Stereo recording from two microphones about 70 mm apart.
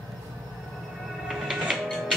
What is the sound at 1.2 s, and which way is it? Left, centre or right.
Music, centre.